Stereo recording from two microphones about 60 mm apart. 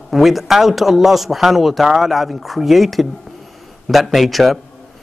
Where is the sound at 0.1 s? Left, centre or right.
Centre.